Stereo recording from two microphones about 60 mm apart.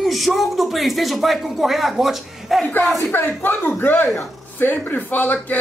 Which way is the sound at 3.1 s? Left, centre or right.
Left.